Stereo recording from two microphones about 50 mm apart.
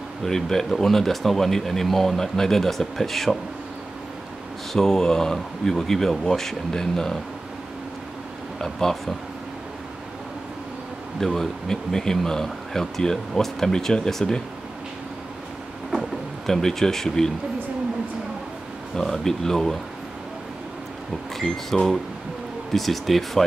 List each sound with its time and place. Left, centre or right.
0.2 s speech: centre
4.7 s speech: centre
8.5 s speech: centre
11.1 s speech: centre
16.4 s speech: centre
18.9 s speech: centre
21.4 s speech: centre